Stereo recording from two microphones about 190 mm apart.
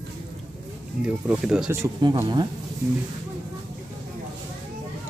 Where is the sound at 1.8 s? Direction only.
20° right (ahead or behind).